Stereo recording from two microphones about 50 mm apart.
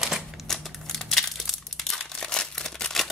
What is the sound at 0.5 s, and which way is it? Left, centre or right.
Typewriter, centre.